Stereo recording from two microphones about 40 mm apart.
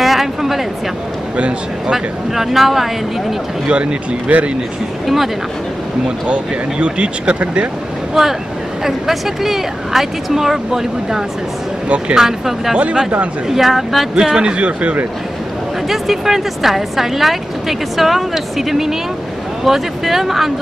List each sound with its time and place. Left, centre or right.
0.0 s a sound: centre
1.9 s speech: centre
3.6 s speech: right
5.0 s speech: centre
6.0 s speech: right
8.1 s speech: centre
14.1 s speech: centre
14.6 s speech: right
15.9 s speech: centre